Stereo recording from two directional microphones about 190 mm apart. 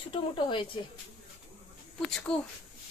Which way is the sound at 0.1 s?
25° left (ahead or behind).